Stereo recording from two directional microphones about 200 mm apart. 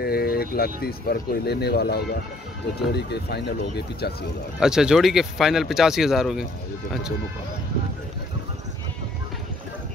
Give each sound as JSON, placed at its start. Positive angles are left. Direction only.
{"t": 0.0, "sound": "speech", "side_deg": 50}
{"t": 4.6, "sound": "speech", "side_deg": -5}